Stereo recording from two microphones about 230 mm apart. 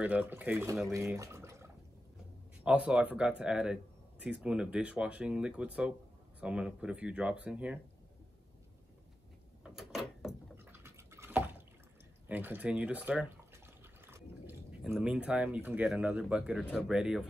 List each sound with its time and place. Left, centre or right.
0.0 s speech: centre
9.6 s a sound: centre
12.3 s speech: centre